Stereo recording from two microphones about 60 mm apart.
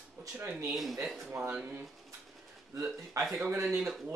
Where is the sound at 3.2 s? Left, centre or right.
Right.